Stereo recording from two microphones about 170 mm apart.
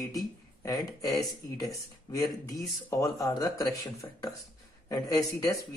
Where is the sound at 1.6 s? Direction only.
20° left (ahead or behind).